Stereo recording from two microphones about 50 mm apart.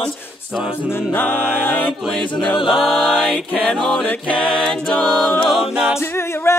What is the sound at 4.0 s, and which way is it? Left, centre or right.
Music, left.